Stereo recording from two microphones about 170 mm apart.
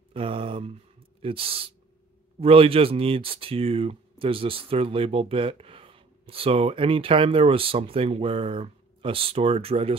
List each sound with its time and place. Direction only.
0.1 s speech: 30° right (ahead or behind)